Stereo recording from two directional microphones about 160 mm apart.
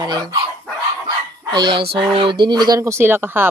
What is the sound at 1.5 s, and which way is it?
Speech, 30° right (ahead or behind).